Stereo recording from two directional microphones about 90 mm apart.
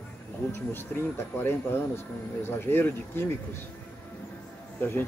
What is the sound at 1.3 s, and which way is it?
Speech, 25° left (ahead or behind).